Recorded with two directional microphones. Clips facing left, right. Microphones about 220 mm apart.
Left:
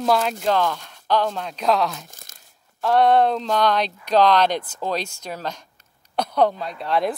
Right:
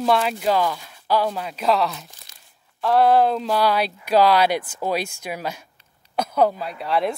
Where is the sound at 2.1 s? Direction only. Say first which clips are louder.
Left 3 dB; 45° left (ahead or behind).